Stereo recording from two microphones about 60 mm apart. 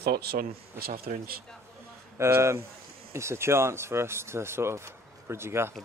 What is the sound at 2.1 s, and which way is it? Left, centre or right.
Speech, right.